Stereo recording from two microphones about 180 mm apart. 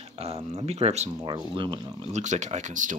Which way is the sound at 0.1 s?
30° right (ahead or behind).